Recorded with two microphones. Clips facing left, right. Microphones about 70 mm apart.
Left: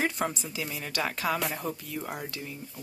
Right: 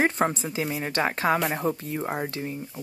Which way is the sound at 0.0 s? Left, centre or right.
Right.